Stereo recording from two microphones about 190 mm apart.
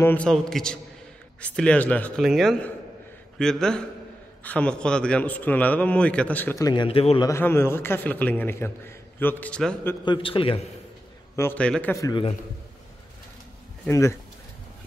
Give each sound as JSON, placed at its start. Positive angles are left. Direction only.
{"t": 0.0, "sound": "a man's voice", "side_deg": 5}
{"t": 7.2, "sound": "a man's voice", "side_deg": 15}
{"t": 10.0, "sound": "a man's voice", "side_deg": 25}
{"t": 11.3, "sound": "a man's voice", "side_deg": 10}
{"t": 12.1, "sound": "a man's voice", "side_deg": 25}
{"t": 13.8, "sound": "a man's voice", "side_deg": 15}